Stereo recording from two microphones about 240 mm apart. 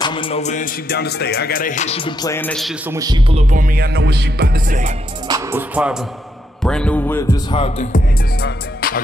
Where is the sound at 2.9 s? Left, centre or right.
Centre.